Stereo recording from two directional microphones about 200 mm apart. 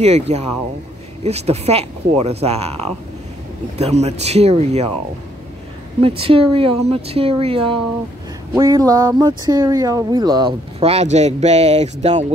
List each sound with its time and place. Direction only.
0.0 s speech: 35° right (ahead or behind)
5.9 s a woman's voice: 30° right (ahead or behind)
8.5 s a sound: 15° right (ahead or behind)
9.5 s a woman's voice: 20° right (ahead or behind)
10.8 s speech: 30° right (ahead or behind)